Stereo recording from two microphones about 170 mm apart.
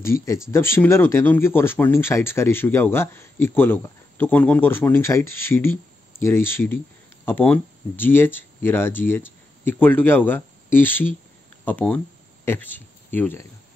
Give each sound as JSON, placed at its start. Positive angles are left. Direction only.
{"t": 0.0, "sound": "speech", "side_deg": 15}